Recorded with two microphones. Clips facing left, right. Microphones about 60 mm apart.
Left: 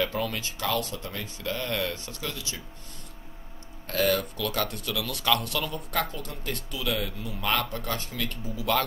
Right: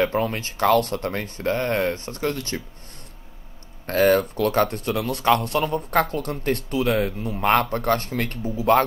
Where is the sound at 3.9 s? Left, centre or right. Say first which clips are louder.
Right 8 dB; right.